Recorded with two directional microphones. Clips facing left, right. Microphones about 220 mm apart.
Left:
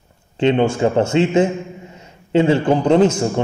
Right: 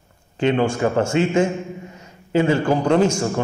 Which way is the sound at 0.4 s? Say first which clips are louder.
Left 3 dB; 25° left (ahead or behind).